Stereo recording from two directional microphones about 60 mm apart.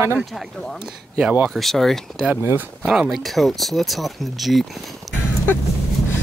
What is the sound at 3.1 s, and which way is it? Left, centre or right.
Speech, centre.